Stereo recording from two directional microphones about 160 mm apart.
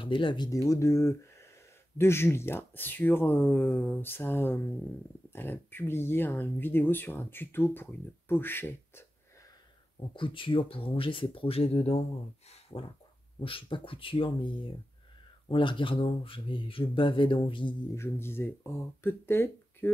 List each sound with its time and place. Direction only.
0.0 s speech: 30° left (ahead or behind); by 9.0 s 15° left (ahead or behind)
9.9 s speech: 30° left (ahead or behind)
12.6 s a sound: 35° left (ahead or behind)
13.4 s speech: 35° left (ahead or behind)
17.9 s speech: 15° left (ahead or behind)